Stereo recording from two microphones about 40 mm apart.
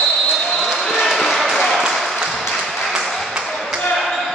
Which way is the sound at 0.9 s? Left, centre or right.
Centre.